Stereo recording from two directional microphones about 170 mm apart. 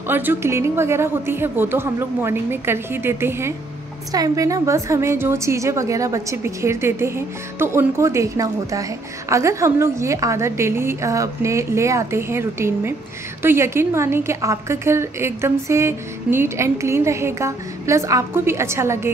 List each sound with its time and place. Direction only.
0.1 s a woman's voice: 10° right (ahead or behind)